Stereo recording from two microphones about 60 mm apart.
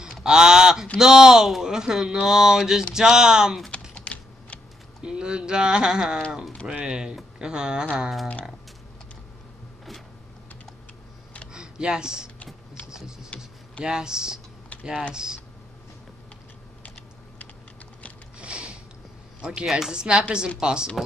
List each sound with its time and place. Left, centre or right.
0.2 s a sound: centre
0.9 s speech: centre
3.9 s typing: left
5.0 s speech: centre
11.5 s a sound: centre
13.8 s speech: centre
18.4 s mechanisms: centre
19.4 s speech: centre